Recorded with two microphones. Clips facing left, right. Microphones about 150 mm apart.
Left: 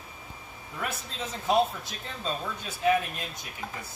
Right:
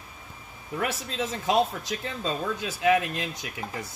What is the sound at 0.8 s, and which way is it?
Speech, 90° right.